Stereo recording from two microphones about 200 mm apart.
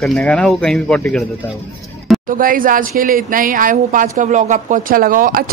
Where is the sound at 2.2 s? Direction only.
45° right (ahead or behind).